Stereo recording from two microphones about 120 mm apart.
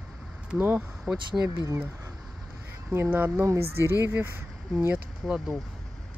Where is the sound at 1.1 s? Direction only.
25° right (ahead or behind).